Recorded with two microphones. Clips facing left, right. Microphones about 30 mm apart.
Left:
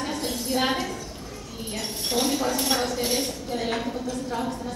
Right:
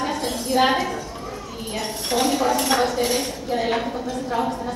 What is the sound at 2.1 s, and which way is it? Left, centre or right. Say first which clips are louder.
Speech: right 5 dB; centre.